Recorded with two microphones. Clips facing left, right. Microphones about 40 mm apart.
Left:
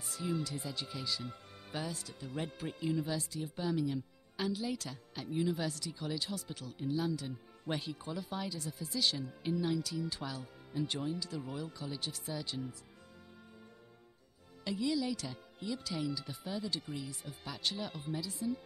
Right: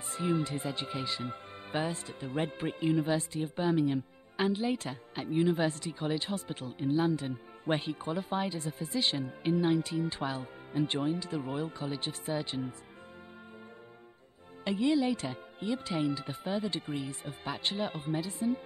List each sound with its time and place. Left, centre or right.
0.0 s speech: right
14.6 s speech: right